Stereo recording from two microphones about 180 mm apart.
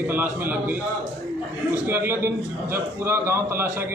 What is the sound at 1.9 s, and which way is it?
Speech, 10° right (ahead or behind).